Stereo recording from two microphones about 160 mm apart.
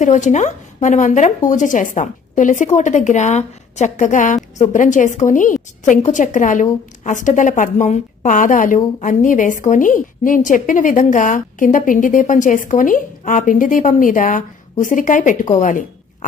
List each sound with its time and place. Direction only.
0.0 s a woman's voice: 50° left (ahead or behind)